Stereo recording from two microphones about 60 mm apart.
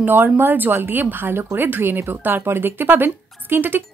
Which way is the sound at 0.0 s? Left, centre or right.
Right.